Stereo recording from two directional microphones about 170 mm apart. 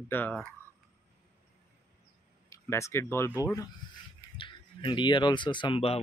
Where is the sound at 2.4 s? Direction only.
15° left (ahead or behind).